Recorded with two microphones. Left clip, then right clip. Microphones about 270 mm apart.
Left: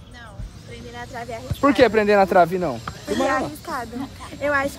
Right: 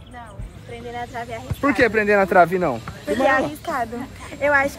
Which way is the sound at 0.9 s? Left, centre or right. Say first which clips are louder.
Right 3 dB; right.